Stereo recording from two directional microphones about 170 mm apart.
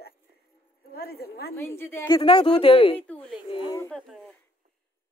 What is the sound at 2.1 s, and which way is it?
Speech, 30° left (ahead or behind).